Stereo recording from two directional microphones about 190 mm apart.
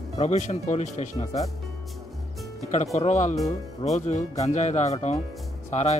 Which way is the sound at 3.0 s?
35° left (ahead or behind).